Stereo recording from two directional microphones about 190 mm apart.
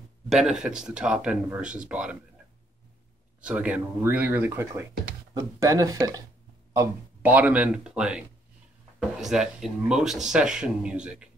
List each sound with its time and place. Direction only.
0.3 s speech: 5° right (ahead or behind)
3.3 s speech: 5° right (ahead or behind)